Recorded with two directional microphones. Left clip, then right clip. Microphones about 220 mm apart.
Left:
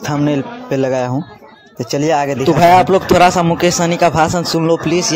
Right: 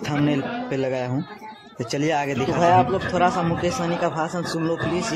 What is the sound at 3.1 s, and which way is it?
Speech, 35° left (ahead or behind).